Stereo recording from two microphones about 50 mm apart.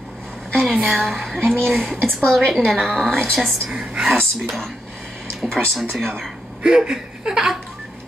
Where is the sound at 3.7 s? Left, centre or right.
Centre.